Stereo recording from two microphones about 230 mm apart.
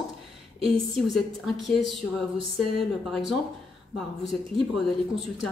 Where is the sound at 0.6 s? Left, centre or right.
Centre.